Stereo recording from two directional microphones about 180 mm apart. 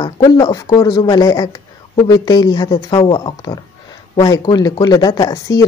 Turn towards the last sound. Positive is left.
turn(degrees=20)  # may be behind; listen again after turning